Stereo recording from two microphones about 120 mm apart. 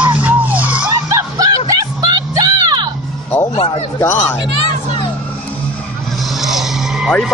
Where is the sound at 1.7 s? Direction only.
35° right (ahead or behind).